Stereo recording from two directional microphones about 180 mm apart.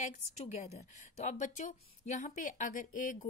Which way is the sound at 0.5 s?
40° left (ahead or behind).